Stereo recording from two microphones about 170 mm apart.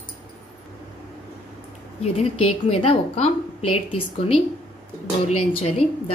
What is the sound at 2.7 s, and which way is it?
A woman's voice, 35° left (ahead or behind).